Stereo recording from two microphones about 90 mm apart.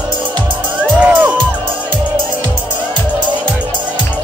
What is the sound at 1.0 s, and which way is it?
Music, 20° right (ahead or behind).